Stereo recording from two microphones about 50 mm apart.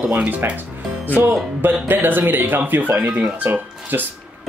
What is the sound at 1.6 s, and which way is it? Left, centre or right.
Speech, right.